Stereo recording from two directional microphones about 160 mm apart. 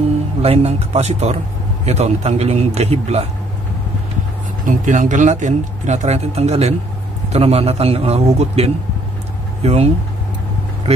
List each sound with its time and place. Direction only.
0.4 s speech: 40° right (ahead or behind)
4.6 s speech: 50° right (ahead or behind)